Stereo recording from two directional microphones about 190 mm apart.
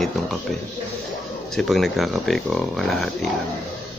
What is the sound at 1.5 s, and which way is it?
Speech, centre (ahead or behind).